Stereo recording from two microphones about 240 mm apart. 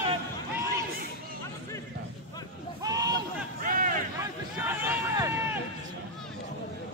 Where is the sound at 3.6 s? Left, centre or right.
Right.